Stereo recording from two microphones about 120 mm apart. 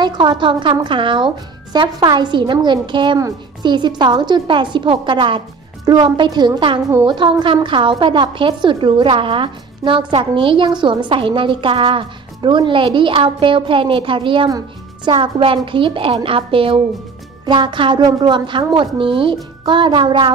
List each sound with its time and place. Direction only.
0.0 s a woman's voice: 40° right (ahead or behind)